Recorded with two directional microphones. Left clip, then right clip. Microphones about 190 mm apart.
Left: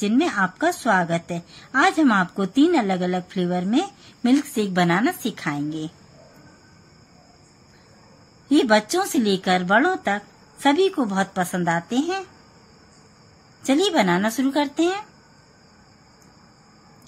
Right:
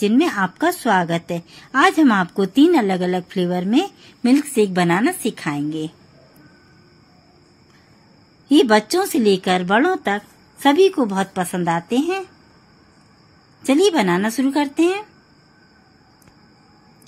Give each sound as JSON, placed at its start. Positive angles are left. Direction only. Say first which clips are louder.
{"t": 0.0, "sound": "a woman's voice", "louder": "right 3 dB", "side_deg": -15}
{"t": 8.5, "sound": "a woman's voice", "louder": "right 4 dB", "side_deg": -15}
{"t": 13.7, "sound": "a woman's voice", "louder": "right 3 dB", "side_deg": -10}